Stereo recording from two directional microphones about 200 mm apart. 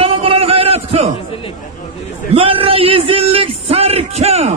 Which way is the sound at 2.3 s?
25° right (ahead or behind).